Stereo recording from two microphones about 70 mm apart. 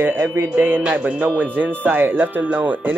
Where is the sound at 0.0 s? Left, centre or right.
Right.